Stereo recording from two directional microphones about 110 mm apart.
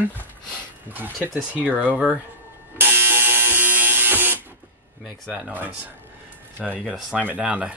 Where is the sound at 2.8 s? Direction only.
20° right (ahead or behind).